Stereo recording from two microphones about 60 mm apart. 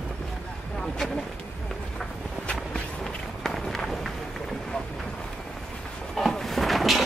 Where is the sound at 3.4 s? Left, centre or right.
Centre.